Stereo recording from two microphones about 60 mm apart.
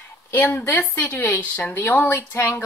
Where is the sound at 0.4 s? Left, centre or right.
Left.